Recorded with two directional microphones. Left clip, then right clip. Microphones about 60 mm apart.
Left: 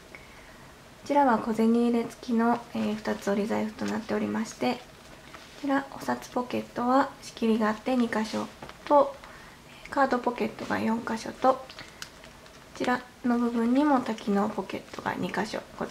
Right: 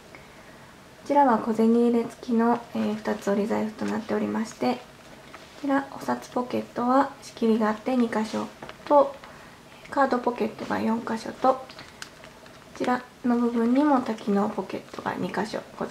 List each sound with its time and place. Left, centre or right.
1.0 s speech: centre
2.3 s speech: left
2.7 s speech: centre
12.7 s speech: centre
14.5 s speech: left
14.9 s speech: centre